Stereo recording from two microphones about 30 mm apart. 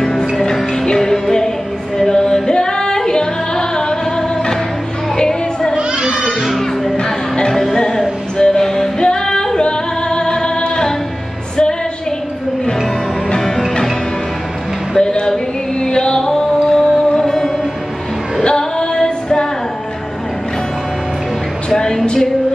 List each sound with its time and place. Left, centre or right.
0.0 s music: left
2.0 s yodeling: left
5.1 s music: left
5.8 s a sound: right
6.5 s music: centre
8.4 s music: left
9.0 s female singing: left
9.6 s music: left
15.0 s music: left
18.4 s female singing: left
21.6 s a sound: centre
22.0 s music: left